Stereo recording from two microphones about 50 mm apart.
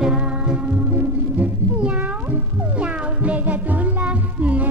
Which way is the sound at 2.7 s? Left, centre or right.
Right.